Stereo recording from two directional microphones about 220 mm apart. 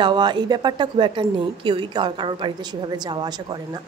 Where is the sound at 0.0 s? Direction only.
20° right (ahead or behind).